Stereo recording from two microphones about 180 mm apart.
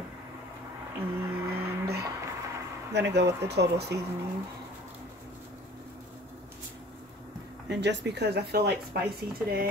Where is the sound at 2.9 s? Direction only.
70° right (ahead or behind).